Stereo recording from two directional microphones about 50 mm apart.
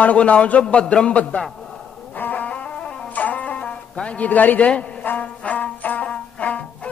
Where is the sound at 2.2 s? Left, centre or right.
Left.